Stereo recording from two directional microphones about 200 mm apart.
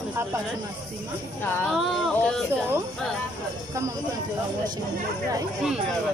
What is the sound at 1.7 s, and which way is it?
Speech, centre (ahead or behind).